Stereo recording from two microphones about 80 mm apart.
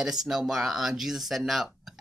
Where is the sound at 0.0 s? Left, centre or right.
Centre.